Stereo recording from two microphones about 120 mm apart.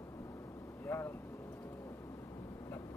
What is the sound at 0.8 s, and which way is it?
Speech, 20° left (ahead or behind).